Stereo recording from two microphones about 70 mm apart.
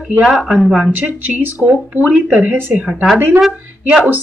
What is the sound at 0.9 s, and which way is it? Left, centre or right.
Speech, right.